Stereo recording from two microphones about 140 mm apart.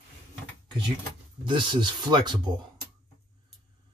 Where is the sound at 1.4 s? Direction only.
35° right (ahead or behind).